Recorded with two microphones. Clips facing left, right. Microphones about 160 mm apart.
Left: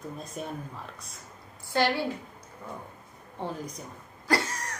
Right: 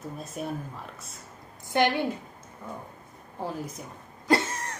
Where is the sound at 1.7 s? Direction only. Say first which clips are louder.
Right 2 dB; 20° right (ahead or behind).